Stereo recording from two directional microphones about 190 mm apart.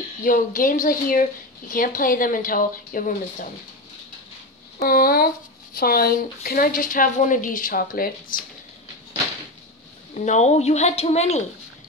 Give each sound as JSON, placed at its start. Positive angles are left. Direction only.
{"t": 0.2, "sound": "a woman's voice", "side_deg": 45}
{"t": 4.8, "sound": "a woman's voice", "side_deg": 50}
{"t": 10.1, "sound": "a woman's voice", "side_deg": 35}